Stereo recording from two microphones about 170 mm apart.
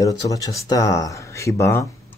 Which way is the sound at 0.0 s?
20° left (ahead or behind).